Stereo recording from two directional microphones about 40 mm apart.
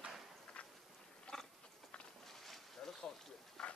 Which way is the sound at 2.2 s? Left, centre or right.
Centre.